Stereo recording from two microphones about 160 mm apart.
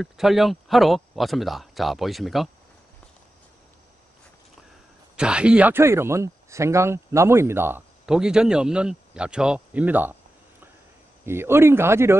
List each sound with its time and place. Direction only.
0.0 s speech: centre (ahead or behind)
5.1 s speech: 5° right (ahead or behind)
11.2 s speech: 15° right (ahead or behind)